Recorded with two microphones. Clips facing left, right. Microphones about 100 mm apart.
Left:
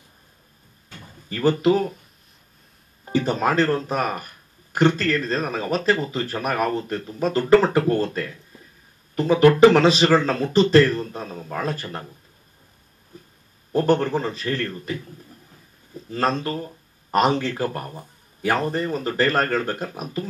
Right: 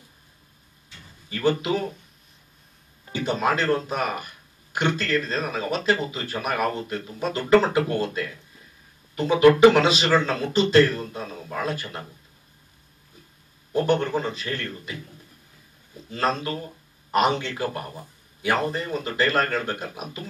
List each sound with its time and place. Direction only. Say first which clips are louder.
0.8 s a sound: left 8 dB; 45° left (ahead or behind)
3.1 s speech: left 3 dB; 40° left (ahead or behind)
13.7 s speech: left 3 dB; 40° left (ahead or behind)
16.1 s speech: left 2 dB; 40° left (ahead or behind)